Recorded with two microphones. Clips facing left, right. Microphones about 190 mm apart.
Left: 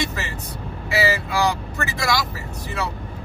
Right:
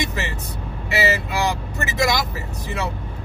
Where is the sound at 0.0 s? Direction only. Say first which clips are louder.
Right 1 dB; 20° right (ahead or behind).